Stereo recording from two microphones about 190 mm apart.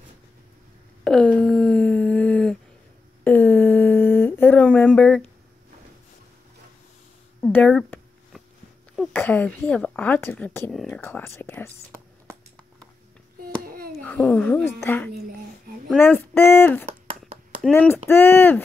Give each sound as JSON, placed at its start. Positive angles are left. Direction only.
{"t": 1.0, "sound": "a sound", "side_deg": 5}
{"t": 7.3, "sound": "a sound", "side_deg": 10}
{"t": 8.9, "sound": "speech", "side_deg": 5}
{"t": 14.0, "sound": "speech", "side_deg": 5}
{"t": 15.0, "sound": "speech", "side_deg": -55}
{"t": 15.9, "sound": "speech", "side_deg": 10}